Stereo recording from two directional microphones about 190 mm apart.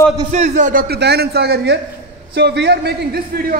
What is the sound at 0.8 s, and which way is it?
A man's voice, 60° right (ahead or behind).